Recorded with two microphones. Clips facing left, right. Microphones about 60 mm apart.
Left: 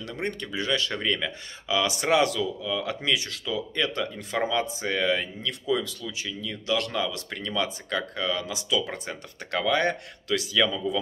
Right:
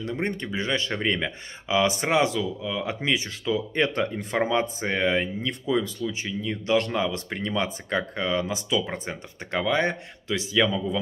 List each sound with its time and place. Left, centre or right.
0.0 s speech: right